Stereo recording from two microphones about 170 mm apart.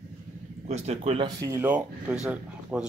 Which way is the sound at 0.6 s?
40° right (ahead or behind).